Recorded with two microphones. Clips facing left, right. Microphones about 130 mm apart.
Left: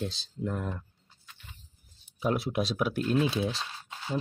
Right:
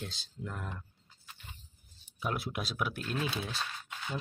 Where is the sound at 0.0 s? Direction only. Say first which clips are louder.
Left 9 dB; 30° left (ahead or behind).